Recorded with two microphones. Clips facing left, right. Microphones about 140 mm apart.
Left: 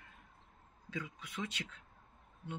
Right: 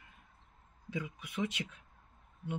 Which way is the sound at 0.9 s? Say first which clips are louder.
Right 4 dB; 10° right (ahead or behind).